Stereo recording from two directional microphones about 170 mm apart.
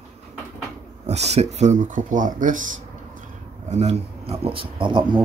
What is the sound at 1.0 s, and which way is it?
Speech, 40° right (ahead or behind).